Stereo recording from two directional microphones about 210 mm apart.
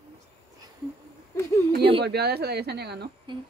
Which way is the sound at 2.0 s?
50° right (ahead or behind).